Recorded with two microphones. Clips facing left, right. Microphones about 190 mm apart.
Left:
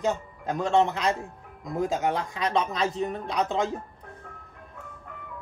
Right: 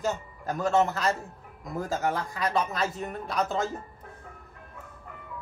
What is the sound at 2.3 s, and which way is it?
Speech, 20° left (ahead or behind).